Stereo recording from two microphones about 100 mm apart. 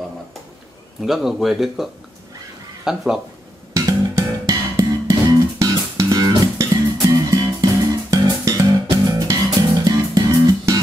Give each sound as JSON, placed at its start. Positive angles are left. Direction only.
{"t": 1.0, "sound": "speech", "side_deg": -5}
{"t": 3.7, "sound": "music", "side_deg": -35}